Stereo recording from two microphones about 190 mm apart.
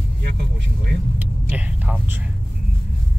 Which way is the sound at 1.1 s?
10° right (ahead or behind).